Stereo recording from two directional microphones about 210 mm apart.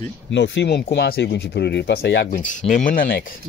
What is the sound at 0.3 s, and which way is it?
Speech, 55° left (ahead or behind).